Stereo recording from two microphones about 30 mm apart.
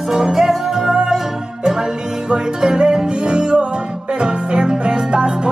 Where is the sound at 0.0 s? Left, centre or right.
Centre.